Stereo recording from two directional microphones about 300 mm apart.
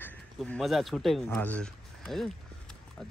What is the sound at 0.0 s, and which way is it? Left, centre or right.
Speech, centre.